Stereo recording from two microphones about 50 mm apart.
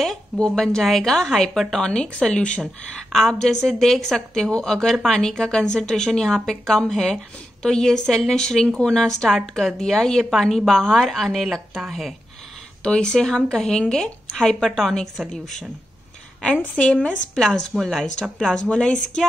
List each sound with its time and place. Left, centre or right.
0.7 s speech: centre
2.6 s speech: centre
4.5 s speech: centre
9.3 s speech: centre
12.8 s speech: centre
16.7 s speech: left
17.7 s speech: centre
18.4 s speech: centre